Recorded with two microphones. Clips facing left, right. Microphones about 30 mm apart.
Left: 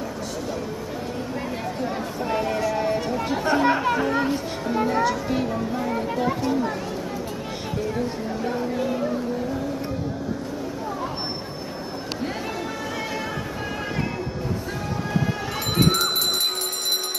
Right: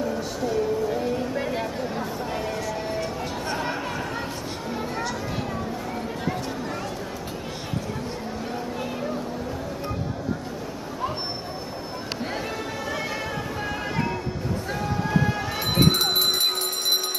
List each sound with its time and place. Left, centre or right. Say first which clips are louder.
1.0 s a sound: right 3 dB; centre
2.7 s music: left 5 dB; centre
3.8 s a sound: left 8 dB; centre
6.1 s children playing: left 6 dB; centre
8.7 s speech: left 5 dB; centre
15.7 s bell: even; centre